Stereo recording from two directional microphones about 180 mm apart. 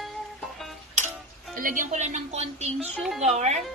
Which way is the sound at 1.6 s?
45° right (ahead or behind).